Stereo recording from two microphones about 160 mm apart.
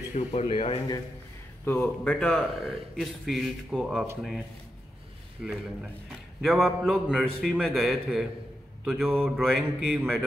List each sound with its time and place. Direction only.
0.1 s speech: 45° left (ahead or behind)
1.6 s a man's voice: 10° left (ahead or behind)
8.8 s mantra: centre (ahead or behind)
9.4 s a man's voice: centre (ahead or behind)